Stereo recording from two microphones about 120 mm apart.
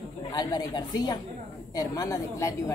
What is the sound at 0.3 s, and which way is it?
A woman's voice, 30° left (ahead or behind).